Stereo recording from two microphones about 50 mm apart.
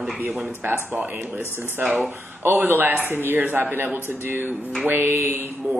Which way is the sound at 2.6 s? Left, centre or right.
Right.